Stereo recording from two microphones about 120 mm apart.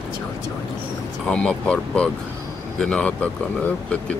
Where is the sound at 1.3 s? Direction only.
10° left (ahead or behind).